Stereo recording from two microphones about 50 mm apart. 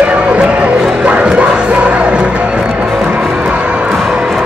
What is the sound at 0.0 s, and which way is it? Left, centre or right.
Music, right.